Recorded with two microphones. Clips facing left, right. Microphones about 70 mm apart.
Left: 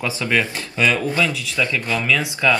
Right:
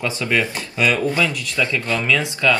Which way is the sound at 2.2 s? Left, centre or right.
Centre.